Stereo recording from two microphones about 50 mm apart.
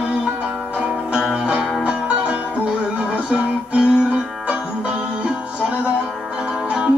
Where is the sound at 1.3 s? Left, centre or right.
Centre.